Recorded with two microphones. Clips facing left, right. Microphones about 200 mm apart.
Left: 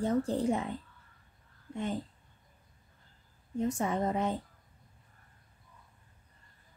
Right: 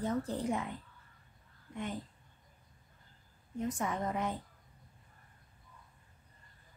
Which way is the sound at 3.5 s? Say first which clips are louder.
Left 5 dB; 25° left (ahead or behind).